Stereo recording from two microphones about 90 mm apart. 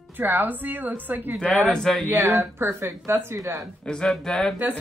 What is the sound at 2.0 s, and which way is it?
Speech, 25° right (ahead or behind).